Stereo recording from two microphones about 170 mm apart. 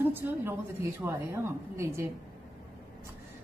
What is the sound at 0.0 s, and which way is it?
A woman's voice, 10° right (ahead or behind).